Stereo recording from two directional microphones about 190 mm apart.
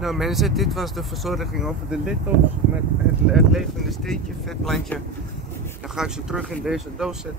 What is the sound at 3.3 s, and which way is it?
Speech, centre (ahead or behind).